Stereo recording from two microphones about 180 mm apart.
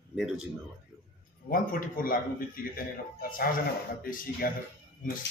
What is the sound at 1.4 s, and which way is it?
Speech, 50° left (ahead or behind).